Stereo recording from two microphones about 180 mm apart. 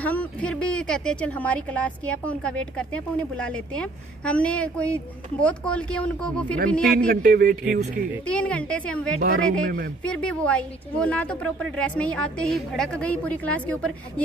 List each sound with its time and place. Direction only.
0.0 s a man's voice: 5° left (ahead or behind)
7.1 s a man's voice: 60° right (ahead or behind)
8.3 s speech: 5° left (ahead or behind)
9.2 s speech: 55° right (ahead or behind)
10.0 s speech: 5° left (ahead or behind)